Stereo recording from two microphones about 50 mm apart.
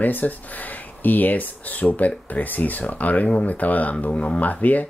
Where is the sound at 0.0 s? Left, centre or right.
Left.